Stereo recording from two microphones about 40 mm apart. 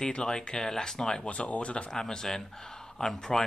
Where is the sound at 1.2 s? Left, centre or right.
Left.